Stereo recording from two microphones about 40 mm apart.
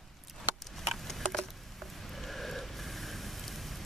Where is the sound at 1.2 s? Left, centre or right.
Centre.